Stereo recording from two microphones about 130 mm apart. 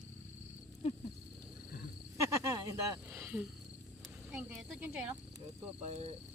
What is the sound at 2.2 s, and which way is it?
Speech, 25° right (ahead or behind).